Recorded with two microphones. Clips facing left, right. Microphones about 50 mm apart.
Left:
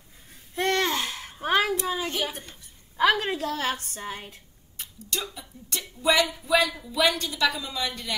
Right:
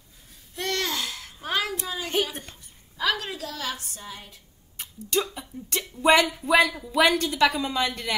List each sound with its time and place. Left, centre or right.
0.6 s babbling: left
3.0 s a woman's voice: left
5.4 s a woman's voice: right